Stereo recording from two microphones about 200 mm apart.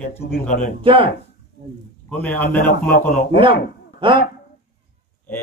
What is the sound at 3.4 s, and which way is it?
Speech, 25° right (ahead or behind).